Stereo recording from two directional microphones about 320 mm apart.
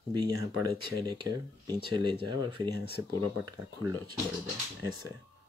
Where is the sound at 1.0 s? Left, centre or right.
Centre.